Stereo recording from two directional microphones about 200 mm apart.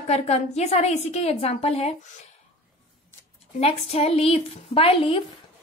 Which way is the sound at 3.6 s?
30° left (ahead or behind).